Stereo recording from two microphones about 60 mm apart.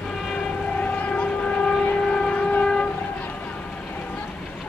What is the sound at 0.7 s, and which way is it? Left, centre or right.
Train, left.